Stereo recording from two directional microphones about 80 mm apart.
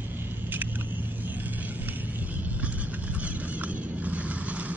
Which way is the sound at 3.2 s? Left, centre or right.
Centre.